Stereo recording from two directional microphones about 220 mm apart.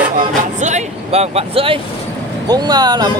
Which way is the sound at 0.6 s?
30° right (ahead or behind).